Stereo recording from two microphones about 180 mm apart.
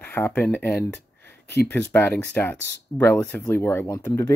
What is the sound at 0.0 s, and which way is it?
Speech, 10° left (ahead or behind).